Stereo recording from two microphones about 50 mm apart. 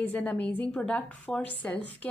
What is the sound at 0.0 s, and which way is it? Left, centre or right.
Speech, left.